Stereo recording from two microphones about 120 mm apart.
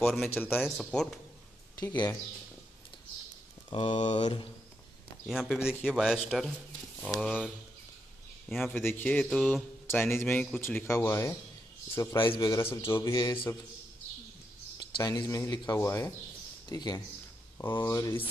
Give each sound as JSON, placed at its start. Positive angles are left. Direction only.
{"t": 0.0, "sound": "speech", "side_deg": 0}
{"t": 0.3, "sound": "speech", "side_deg": 20}
{"t": 0.6, "sound": "speech", "side_deg": 0}
{"t": 3.7, "sound": "speech", "side_deg": 40}
{"t": 5.2, "sound": "speech", "side_deg": 0}
{"t": 8.5, "sound": "speech", "side_deg": 0}
{"t": 8.7, "sound": "a man's voice", "side_deg": 15}
{"t": 9.8, "sound": "a man's voice", "side_deg": 20}
{"t": 12.2, "sound": "speech", "side_deg": 45}
{"t": 12.4, "sound": "speech", "side_deg": 25}
{"t": 12.8, "sound": "speech", "side_deg": 40}
{"t": 14.8, "sound": "speech", "side_deg": 35}